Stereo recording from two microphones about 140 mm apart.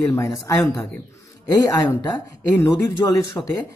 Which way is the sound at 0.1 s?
20° left (ahead or behind).